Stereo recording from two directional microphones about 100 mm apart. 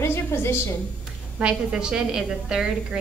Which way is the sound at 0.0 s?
25° left (ahead or behind).